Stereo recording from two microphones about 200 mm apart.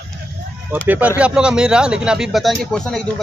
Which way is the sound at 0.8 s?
10° right (ahead or behind).